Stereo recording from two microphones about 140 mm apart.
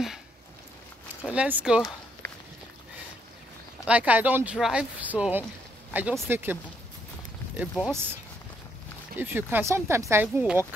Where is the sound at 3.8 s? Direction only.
10° right (ahead or behind).